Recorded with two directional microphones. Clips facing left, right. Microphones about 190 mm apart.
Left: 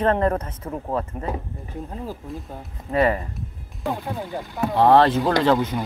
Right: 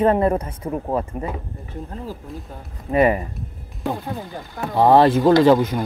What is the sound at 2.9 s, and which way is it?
Speech, 15° right (ahead or behind).